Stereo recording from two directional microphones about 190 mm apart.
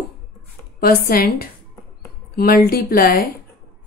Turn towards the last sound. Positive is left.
turn(degrees=50)  # may be behind; listen again after turning